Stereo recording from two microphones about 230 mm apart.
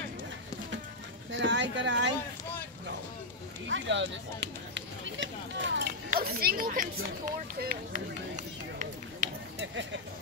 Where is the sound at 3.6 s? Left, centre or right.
Right.